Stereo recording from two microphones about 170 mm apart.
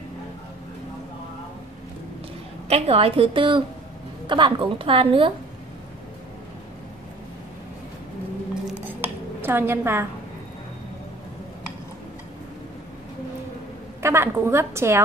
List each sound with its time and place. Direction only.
2.7 s a woman's voice: 35° right (ahead or behind)
9.0 s a sound: 10° right (ahead or behind)
14.0 s a woman's voice: 15° right (ahead or behind)